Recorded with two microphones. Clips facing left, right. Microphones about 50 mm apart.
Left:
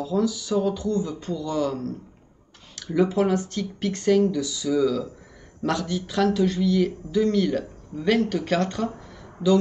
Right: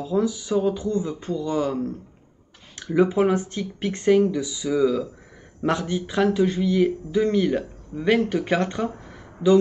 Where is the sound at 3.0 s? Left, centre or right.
Centre.